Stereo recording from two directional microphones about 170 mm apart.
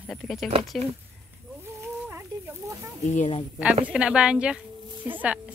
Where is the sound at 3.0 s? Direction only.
45° left (ahead or behind).